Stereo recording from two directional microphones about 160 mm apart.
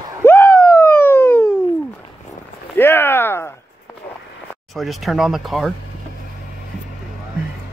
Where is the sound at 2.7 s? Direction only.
15° left (ahead or behind).